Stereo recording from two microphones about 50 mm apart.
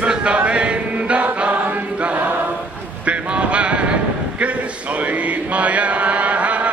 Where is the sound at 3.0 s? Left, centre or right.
Right.